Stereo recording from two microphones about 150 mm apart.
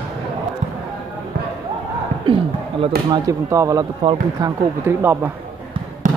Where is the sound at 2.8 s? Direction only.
25° right (ahead or behind).